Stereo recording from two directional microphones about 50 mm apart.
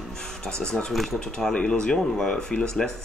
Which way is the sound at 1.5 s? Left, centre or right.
Centre.